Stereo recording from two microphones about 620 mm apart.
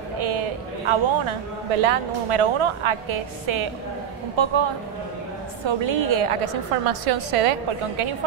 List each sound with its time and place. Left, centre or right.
0.2 s a man's voice: right
5.7 s a woman's voice: right